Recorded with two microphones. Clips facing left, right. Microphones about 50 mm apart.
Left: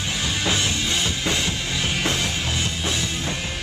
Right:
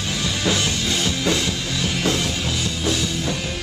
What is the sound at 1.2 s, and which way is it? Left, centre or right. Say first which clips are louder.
Music: right 2 dB; left.